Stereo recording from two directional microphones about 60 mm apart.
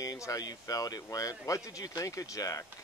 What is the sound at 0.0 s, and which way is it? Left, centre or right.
Speech, left.